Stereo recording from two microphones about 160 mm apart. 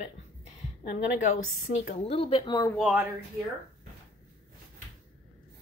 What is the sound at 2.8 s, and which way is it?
Speech, 5° right (ahead or behind).